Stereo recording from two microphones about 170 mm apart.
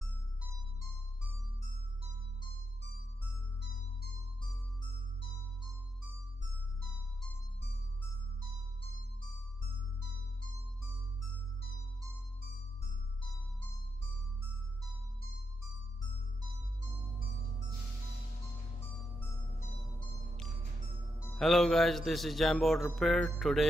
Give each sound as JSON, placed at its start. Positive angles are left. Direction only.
{"t": 19.1, "sound": "music", "side_deg": 10}
{"t": 21.3, "sound": "speech", "side_deg": 0}